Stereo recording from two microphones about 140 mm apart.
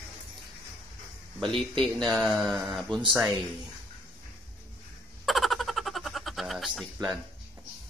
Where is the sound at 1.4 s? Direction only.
Centre (ahead or behind).